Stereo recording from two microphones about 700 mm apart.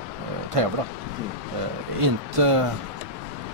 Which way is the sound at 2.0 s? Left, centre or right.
Right.